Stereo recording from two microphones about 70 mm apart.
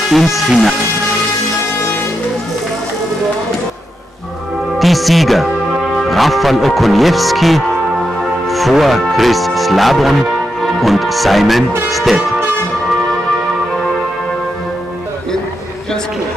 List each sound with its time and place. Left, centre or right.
0.1 s speech: centre
4.7 s speech: centre